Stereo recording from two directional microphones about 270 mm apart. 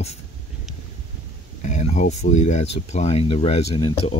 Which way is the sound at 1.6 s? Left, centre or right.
Left.